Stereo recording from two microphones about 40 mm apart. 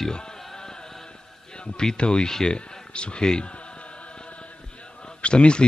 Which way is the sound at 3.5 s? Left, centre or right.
Left.